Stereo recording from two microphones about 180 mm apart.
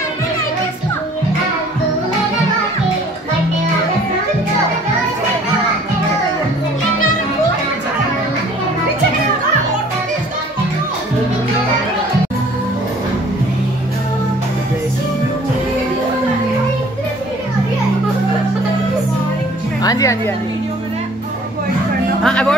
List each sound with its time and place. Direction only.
19.8 s music: 20° left (ahead or behind)
22.2 s music: 5° left (ahead or behind)